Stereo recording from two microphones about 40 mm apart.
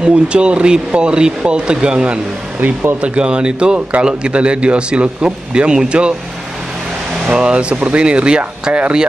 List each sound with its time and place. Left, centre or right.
0.0 s speech: right
7.2 s speech: right